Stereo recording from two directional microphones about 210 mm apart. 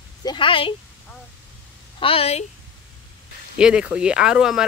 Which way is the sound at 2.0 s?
25° left (ahead or behind).